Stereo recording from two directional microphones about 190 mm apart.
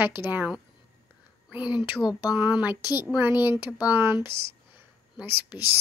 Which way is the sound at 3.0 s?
10° right (ahead or behind).